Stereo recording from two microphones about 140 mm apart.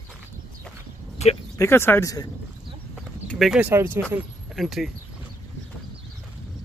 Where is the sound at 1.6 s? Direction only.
15° left (ahead or behind).